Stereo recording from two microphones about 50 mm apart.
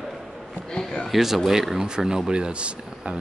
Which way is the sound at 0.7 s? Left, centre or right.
Centre.